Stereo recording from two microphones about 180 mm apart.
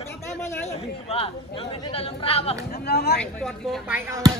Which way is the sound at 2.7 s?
60° left (ahead or behind).